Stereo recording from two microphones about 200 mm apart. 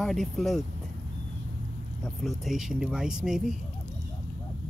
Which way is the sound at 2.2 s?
Centre (ahead or behind).